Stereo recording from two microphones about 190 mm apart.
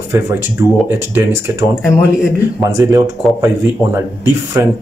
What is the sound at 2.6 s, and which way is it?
Speech, 15° right (ahead or behind).